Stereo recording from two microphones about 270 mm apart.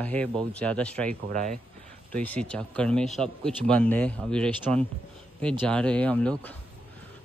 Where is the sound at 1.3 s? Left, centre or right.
Right.